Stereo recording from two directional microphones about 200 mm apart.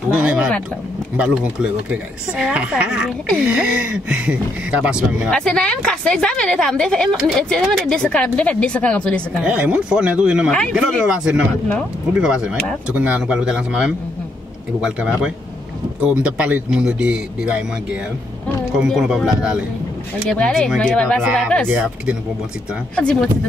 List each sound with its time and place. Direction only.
0.1 s speech: 5° right (ahead or behind)
9.4 s speech: 5° right (ahead or behind)
18.8 s speech: 5° right (ahead or behind)
21.6 s speech: 5° right (ahead or behind)